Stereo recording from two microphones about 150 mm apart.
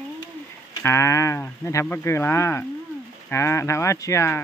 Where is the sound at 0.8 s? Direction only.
20° left (ahead or behind).